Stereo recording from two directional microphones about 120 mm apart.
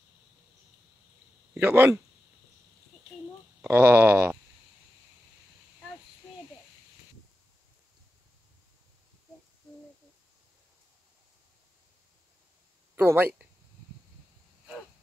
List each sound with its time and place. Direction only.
1.5 s speech: 15° right (ahead or behind)
3.7 s speech: 15° right (ahead or behind)
12.9 s speech: 20° right (ahead or behind)